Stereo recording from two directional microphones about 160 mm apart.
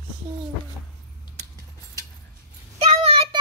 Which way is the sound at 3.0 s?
35° right (ahead or behind).